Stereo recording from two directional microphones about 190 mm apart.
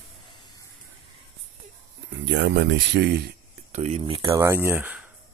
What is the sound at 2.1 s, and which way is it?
Speech, 70° right (ahead or behind).